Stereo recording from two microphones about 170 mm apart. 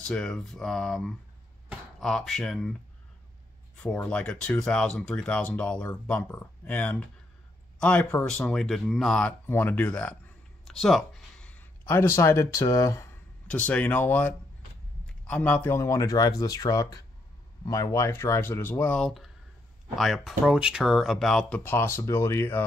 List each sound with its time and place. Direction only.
0.1 s speech: 5° left (ahead or behind)
3.8 s speech: 5° left (ahead or behind)
9.5 s speech: 10° left (ahead or behind)